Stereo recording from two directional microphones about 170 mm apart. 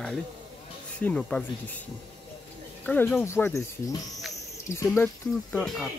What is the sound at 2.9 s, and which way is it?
Speech, 10° left (ahead or behind).